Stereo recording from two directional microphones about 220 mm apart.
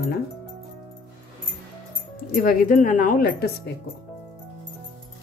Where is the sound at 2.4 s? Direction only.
40° left (ahead or behind).